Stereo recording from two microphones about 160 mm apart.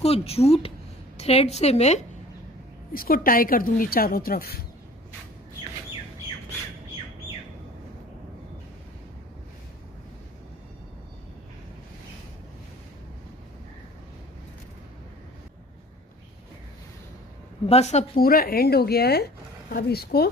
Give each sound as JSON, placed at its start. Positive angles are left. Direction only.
{"t": 0.0, "sound": "a woman's voice", "side_deg": 40}
{"t": 2.9, "sound": "speech", "side_deg": 65}
{"t": 17.6, "sound": "a woman's voice", "side_deg": 45}
{"t": 18.1, "sound": "speech", "side_deg": 70}